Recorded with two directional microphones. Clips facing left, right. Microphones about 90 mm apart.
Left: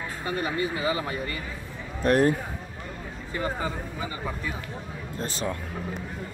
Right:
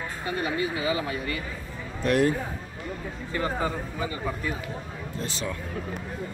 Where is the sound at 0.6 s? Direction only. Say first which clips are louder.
Even; 35° left (ahead or behind).